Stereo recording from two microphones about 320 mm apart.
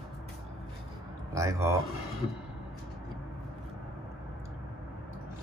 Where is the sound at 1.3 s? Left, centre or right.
Centre.